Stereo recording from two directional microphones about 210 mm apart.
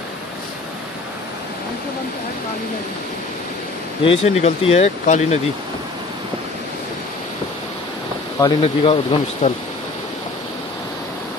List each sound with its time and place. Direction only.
4.0 s speech: 30° left (ahead or behind)
8.4 s speech: 20° left (ahead or behind)
9.4 s speech: 35° left (ahead or behind)